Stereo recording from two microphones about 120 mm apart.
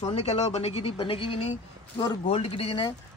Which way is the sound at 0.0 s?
65° left (ahead or behind).